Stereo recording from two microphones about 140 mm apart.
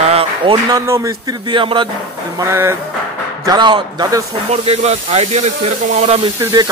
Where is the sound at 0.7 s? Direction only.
20° right (ahead or behind).